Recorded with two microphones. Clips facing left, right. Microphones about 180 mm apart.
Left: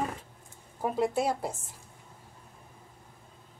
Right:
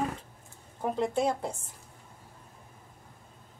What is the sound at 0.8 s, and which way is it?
Speech, 5° left (ahead or behind).